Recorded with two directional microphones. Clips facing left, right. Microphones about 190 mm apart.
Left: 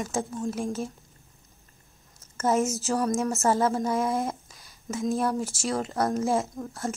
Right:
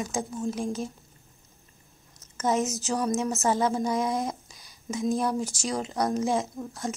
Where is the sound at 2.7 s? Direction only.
15° right (ahead or behind).